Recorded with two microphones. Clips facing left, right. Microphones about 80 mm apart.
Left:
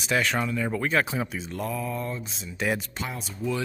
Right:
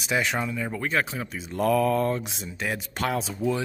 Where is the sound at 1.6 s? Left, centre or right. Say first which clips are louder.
Right 11 dB; right.